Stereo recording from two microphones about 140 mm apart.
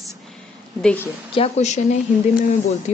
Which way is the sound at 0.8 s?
15° left (ahead or behind).